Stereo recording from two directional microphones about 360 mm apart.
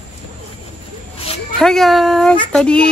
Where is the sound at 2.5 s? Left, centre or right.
Centre.